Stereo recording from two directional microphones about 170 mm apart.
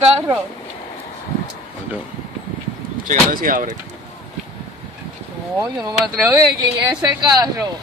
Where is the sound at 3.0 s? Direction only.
55° right (ahead or behind).